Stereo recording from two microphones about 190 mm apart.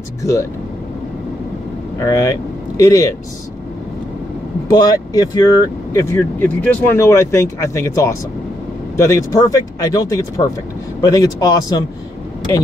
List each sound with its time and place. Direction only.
0.2 s speech: 15° left (ahead or behind)
2.0 s speech: 15° left (ahead or behind)
4.6 s speech: 20° left (ahead or behind)